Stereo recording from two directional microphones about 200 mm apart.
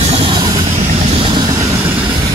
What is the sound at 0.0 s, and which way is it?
Vehicle, 30° right (ahead or behind).